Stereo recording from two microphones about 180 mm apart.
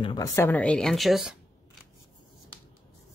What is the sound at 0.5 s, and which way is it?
Speech, 5° left (ahead or behind).